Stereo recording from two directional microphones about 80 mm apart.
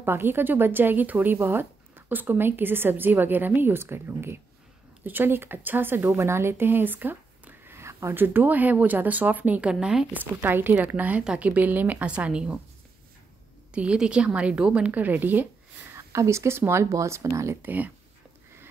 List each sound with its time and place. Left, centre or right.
0.0 s a woman's voice: right; by 10.0 s centre
10.1 s a woman's voice: right
13.7 s a woman's voice: centre
15.9 s speech: right
17.6 s a woman's voice: right